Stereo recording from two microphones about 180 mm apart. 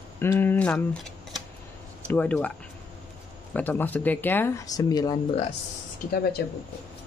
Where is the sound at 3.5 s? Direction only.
10° left (ahead or behind).